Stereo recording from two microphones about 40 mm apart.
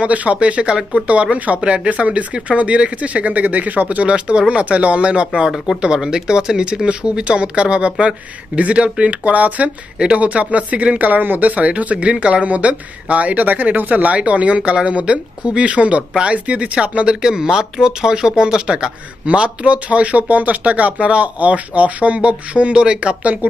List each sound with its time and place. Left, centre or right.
0.0 s speech: right
17.2 s speech: centre